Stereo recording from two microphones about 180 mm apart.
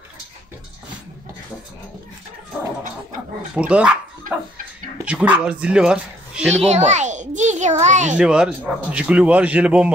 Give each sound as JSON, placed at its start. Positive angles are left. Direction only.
{"t": 3.5, "sound": "speech", "side_deg": -5}
{"t": 5.0, "sound": "speech", "side_deg": -5}
{"t": 6.5, "sound": "a sound", "side_deg": -35}
{"t": 8.2, "sound": "speech", "side_deg": -5}